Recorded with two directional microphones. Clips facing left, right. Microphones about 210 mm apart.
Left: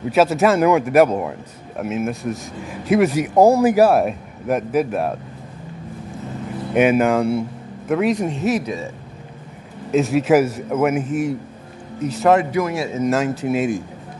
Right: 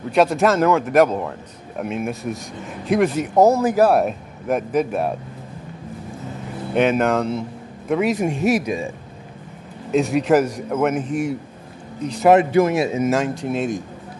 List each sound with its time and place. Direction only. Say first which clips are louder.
0.1 s speech: left 1 dB; 5° left (ahead or behind)
6.7 s speech: left 2 dB; 10° left (ahead or behind)
7.9 s speech: left 1 dB; centre (ahead or behind)
9.8 s speech: left 1 dB; centre (ahead or behind)
12.3 s speech: right 3 dB; 20° right (ahead or behind)
13.0 s speech: left 1 dB; 5° left (ahead or behind)